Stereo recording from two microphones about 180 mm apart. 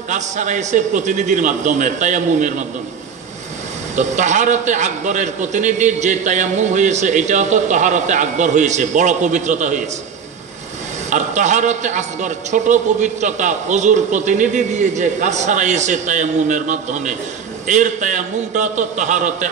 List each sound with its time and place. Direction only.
0.1 s a man's voice: 45° right (ahead or behind)
3.9 s a man's voice: 40° right (ahead or behind)
11.1 s a man's voice: 40° right (ahead or behind)